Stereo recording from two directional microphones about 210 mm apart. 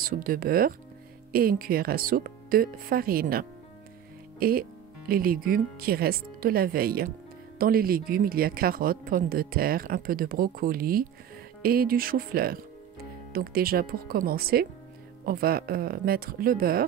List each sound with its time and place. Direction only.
0.0 s speech: 45° right (ahead or behind)